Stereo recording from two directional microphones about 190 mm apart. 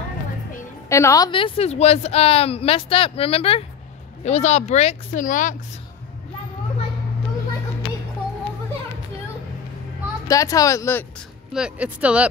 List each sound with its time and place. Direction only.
0.8 s speech: 15° left (ahead or behind); by 5.6 s 45° left (ahead or behind)
10.2 s speech: 15° left (ahead or behind)
11.5 s speech: 5° right (ahead or behind)